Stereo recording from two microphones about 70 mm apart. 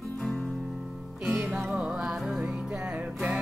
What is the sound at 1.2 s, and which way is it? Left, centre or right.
Music, centre.